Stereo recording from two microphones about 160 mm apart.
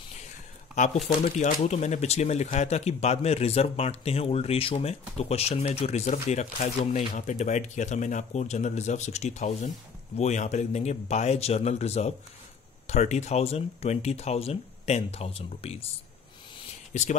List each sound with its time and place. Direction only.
1.0 s speech: 55° left (ahead or behind); by 15.8 s 40° left (ahead or behind)